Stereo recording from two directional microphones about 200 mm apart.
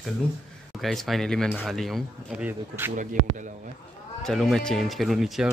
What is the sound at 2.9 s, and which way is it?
Speech, 40° right (ahead or behind).